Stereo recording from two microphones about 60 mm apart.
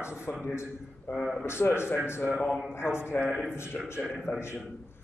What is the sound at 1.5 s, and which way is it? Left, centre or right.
Speech, left.